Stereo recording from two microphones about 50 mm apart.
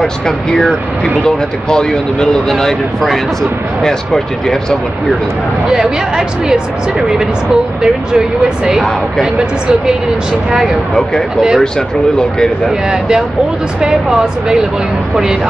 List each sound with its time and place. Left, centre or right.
0.6 s speech: centre
5.7 s speech: centre
13.7 s speech: centre